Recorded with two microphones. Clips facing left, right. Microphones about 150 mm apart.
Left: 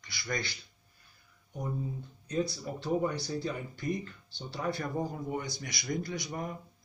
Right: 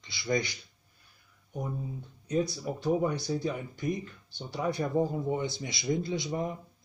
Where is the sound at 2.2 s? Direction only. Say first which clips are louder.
Right 3 dB; 15° right (ahead or behind).